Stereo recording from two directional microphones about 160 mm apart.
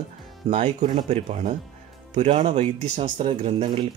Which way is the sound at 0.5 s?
40° right (ahead or behind).